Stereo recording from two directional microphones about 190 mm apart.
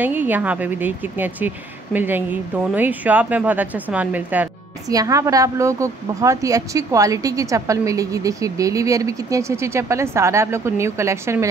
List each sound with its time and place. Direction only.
0.0 s a woman's voice: 10° right (ahead or behind)